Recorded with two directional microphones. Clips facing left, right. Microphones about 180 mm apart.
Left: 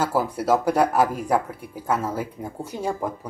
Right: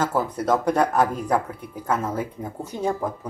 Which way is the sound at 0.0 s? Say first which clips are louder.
Even; 10° left (ahead or behind).